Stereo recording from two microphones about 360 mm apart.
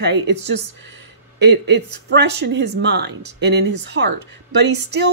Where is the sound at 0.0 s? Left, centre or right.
Right.